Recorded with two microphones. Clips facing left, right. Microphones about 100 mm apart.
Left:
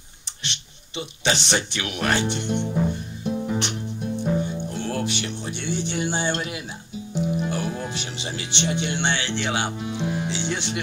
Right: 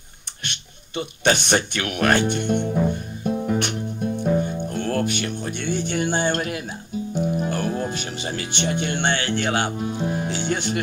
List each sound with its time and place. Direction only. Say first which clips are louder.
0.4 s speech: right 1 dB; 50° right (ahead or behind)